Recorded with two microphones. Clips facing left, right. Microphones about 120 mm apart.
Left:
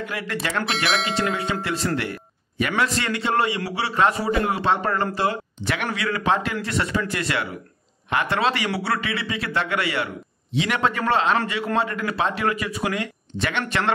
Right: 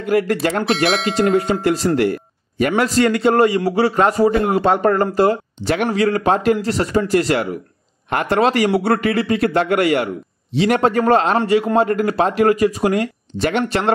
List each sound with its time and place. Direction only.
0.1 s a man's voice: 45° right (ahead or behind)